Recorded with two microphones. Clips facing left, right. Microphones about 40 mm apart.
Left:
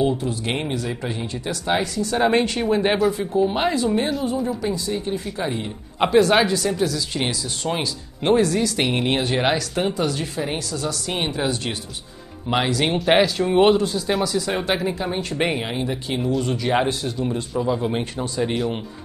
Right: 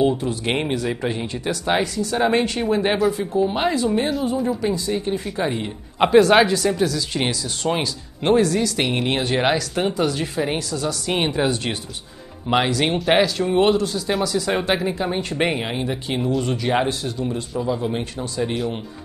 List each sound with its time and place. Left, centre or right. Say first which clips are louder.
0.0 s speech: right 2 dB; centre
1.2 s speech: right 2 dB; centre